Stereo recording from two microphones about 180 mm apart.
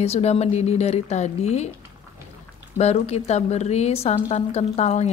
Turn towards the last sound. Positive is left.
turn(degrees=40)  # may be behind; listen again after turning